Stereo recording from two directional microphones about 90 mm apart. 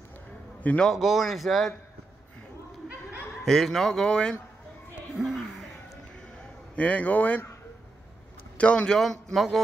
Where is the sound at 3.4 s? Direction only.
5° left (ahead or behind).